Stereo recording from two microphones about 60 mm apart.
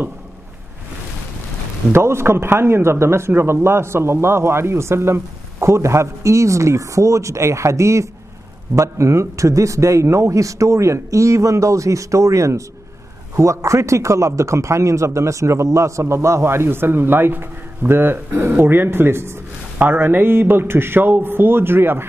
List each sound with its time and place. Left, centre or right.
1.9 s a man's voice: right
19.8 s speech: right